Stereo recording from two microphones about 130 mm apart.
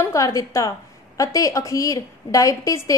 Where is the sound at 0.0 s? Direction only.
25° left (ahead or behind).